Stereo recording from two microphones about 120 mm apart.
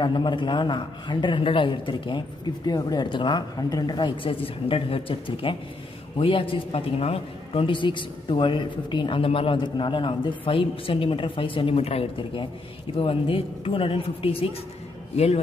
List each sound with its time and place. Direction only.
0.0 s a man's voice: 40° left (ahead or behind)